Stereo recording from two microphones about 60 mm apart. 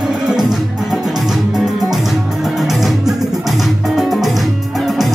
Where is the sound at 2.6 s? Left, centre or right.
Centre.